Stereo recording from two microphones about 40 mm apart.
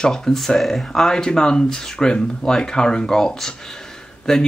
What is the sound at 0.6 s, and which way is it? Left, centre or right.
Speech, centre.